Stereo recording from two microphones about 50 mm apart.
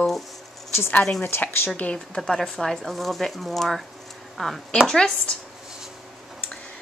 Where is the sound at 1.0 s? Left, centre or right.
Centre.